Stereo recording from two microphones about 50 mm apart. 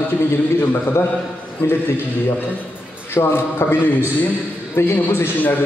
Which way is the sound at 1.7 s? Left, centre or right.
Left.